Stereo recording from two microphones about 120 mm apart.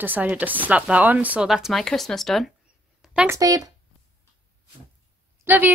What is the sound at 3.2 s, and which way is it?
Speech, 30° right (ahead or behind).